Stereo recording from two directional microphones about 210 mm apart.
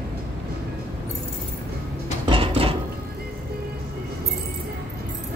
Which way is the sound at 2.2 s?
25° right (ahead or behind).